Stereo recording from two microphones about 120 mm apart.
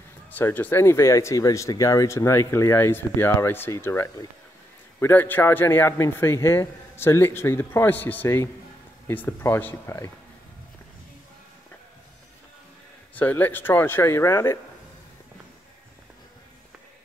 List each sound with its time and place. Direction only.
0.3 s speech: 15° left (ahead or behind)
13.1 s speech: 15° left (ahead or behind)